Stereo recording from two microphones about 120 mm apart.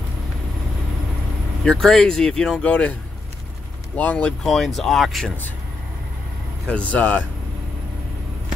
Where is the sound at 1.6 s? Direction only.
5° left (ahead or behind).